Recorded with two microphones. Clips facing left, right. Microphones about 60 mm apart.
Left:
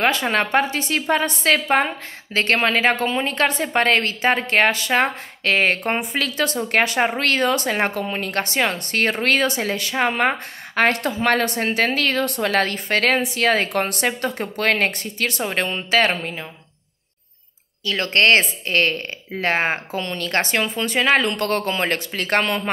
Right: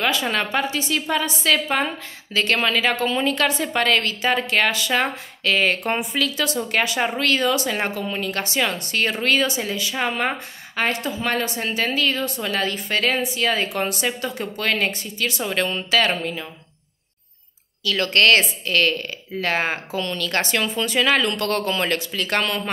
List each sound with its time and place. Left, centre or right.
0.0 s a woman's voice: left
15.4 s speech: left
17.8 s speech: left